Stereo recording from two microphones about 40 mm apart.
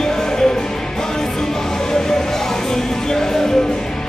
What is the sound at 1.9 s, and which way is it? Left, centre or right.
Music, centre.